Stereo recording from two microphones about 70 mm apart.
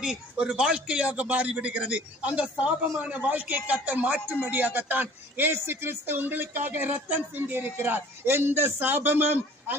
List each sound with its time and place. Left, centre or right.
0.0 s a man's voice: centre; by 9.8 s right